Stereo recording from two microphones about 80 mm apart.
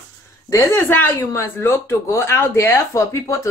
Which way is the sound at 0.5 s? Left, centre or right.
Left.